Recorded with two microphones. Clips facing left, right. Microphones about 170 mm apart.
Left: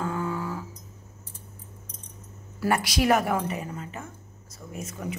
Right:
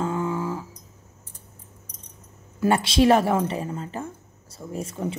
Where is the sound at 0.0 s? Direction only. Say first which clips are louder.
Right 4 dB; 20° right (ahead or behind).